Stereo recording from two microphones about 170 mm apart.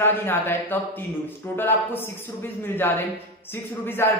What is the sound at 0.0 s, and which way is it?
Speech, 15° left (ahead or behind).